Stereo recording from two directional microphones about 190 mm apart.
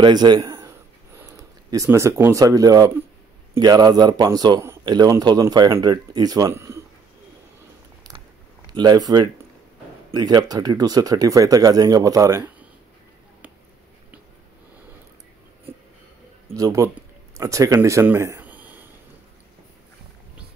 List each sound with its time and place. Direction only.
0.0 s a man's voice: 20° right (ahead or behind)
8.1 s biting: 20° right (ahead or behind)
8.7 s a man's voice: 20° right (ahead or behind)
16.5 s speech: 15° right (ahead or behind)